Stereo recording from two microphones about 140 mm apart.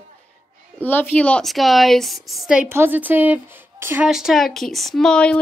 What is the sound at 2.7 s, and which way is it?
Speech, 15° right (ahead or behind).